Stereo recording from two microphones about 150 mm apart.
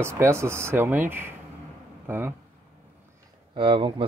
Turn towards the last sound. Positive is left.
turn(degrees=-35)  # may be behind; listen again after turning